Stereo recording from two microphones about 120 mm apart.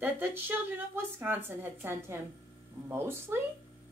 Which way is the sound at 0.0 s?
15° right (ahead or behind).